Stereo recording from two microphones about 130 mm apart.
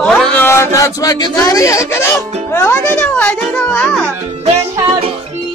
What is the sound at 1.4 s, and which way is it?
Speech, 25° left (ahead or behind).